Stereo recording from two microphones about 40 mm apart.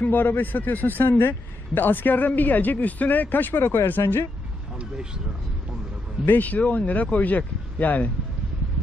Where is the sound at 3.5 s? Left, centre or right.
Left.